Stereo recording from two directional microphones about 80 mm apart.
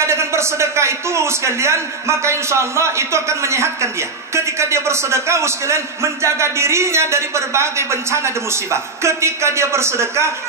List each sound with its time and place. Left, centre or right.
0.0 s a man's voice: right